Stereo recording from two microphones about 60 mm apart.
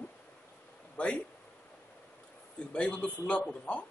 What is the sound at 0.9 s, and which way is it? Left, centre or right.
Speech, centre.